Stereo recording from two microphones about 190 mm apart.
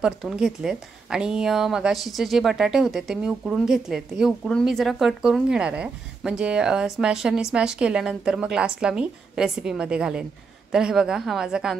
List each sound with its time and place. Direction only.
0.0 s a woman's voice: 5° right (ahead or behind)